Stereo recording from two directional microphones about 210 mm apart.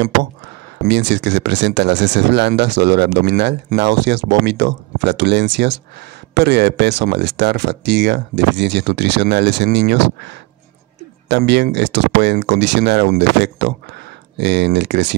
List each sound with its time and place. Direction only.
0.8 s speech: 55° right (ahead or behind)